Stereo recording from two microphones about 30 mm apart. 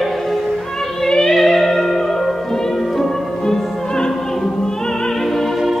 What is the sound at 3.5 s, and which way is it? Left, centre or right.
Opera, centre.